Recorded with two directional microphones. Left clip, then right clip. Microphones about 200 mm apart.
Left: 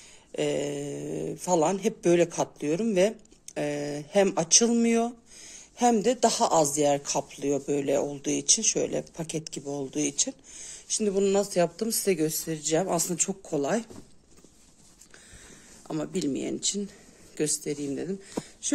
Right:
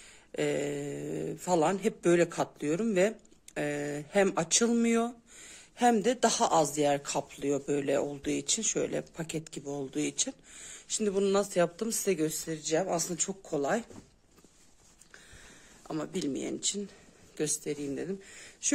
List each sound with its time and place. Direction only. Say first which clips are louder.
0.3 s speech: left 3 dB; 15° right (ahead or behind); by 13.8 s centre (ahead or behind)
15.9 s speech: left 4 dB; centre (ahead or behind)